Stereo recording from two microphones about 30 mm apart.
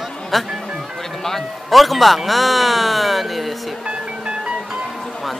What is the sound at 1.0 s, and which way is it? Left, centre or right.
Music, centre.